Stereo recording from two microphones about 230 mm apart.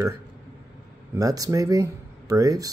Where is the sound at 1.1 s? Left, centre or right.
Centre.